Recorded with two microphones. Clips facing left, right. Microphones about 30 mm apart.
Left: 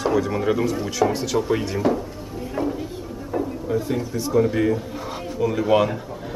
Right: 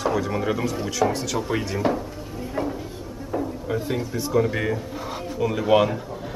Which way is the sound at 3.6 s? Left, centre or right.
Centre.